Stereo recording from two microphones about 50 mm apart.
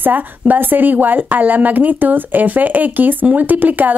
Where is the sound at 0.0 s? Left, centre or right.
Right.